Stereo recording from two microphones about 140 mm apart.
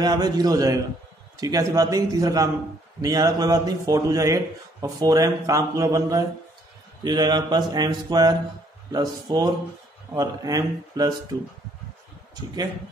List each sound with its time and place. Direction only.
0.0 s speech: 30° right (ahead or behind)